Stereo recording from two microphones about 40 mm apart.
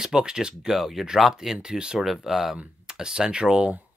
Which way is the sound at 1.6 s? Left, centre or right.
Right.